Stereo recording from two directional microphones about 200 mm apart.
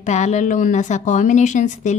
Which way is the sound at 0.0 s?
35° left (ahead or behind).